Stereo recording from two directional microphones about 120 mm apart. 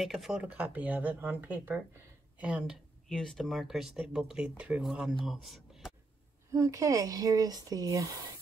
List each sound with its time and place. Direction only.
0.0 s speech: centre (ahead or behind)
6.5 s speech: 25° right (ahead or behind)